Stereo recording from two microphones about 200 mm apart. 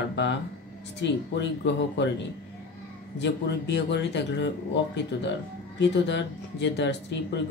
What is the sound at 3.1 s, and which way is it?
Speech, 60° left (ahead or behind).